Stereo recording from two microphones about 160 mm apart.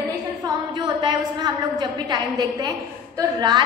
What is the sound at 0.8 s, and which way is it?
A woman's voice, 30° right (ahead or behind).